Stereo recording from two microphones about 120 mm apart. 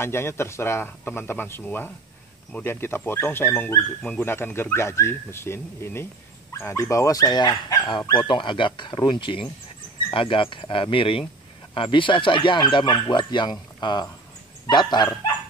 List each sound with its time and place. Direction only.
0.0 s speech: 20° left (ahead or behind); by 15.0 s 40° left (ahead or behind)